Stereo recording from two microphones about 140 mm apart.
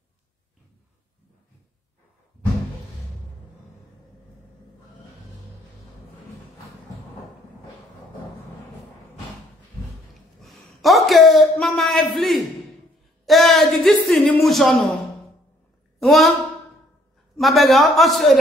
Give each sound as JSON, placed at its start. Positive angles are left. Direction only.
{"t": 10.4, "sound": "a sound", "side_deg": 0}
{"t": 11.5, "sound": "a man's voice", "side_deg": 5}
{"t": 16.0, "sound": "a man's voice", "side_deg": 0}
{"t": 17.4, "sound": "a man's voice", "side_deg": 0}